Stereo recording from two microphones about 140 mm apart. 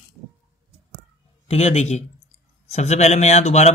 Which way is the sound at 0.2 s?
15° right (ahead or behind).